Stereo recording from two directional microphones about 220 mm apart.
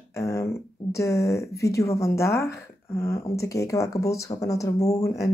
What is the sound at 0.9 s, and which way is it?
Speech, 15° left (ahead or behind).